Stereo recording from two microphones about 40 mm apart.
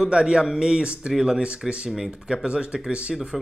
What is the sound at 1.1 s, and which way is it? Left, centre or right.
Speech, centre.